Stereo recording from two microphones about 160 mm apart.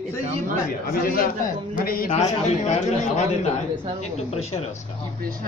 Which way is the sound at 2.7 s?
45° left (ahead or behind).